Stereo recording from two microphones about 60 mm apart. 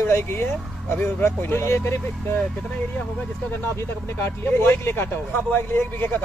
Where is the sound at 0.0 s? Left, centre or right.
Left.